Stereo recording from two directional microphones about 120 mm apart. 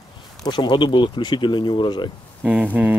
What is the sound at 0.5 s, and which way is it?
Speech, 40° left (ahead or behind).